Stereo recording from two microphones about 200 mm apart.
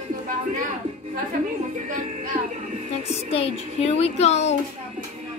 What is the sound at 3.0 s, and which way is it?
Speech, 30° left (ahead or behind).